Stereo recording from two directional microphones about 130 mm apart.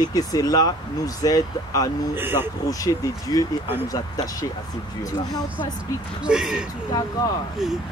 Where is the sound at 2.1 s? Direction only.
15° right (ahead or behind).